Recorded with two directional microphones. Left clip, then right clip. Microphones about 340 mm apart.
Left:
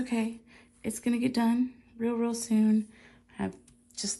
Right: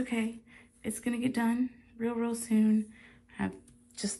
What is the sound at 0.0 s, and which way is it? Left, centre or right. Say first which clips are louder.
Speech: left 2 dB; centre.